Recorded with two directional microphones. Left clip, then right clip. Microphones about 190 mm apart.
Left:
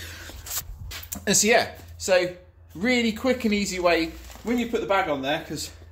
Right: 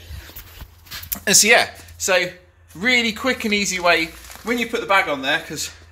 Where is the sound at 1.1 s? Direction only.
10° right (ahead or behind).